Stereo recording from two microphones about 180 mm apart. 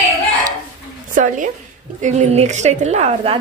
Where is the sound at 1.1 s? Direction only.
45° right (ahead or behind).